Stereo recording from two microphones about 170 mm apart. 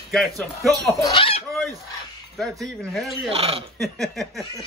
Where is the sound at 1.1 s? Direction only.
35° left (ahead or behind).